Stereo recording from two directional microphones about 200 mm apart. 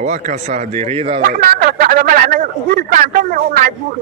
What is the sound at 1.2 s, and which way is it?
Speech, 45° right (ahead or behind).